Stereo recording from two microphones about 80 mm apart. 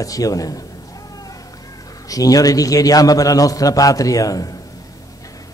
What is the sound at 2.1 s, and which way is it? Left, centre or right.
A man's voice, left.